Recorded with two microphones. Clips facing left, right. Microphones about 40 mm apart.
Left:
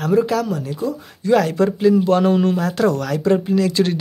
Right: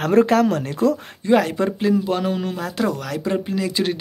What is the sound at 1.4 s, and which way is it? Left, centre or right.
Speech, centre.